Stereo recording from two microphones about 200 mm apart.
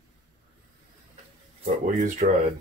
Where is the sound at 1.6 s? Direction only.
40° right (ahead or behind).